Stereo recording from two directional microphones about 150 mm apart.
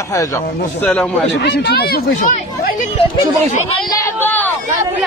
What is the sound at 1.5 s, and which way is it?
Speech, 90° left.